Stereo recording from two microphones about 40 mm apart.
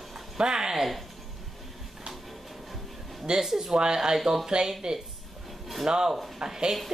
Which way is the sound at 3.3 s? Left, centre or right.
Centre.